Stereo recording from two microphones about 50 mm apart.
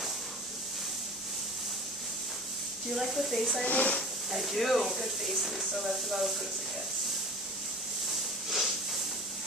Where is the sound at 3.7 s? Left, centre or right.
Left.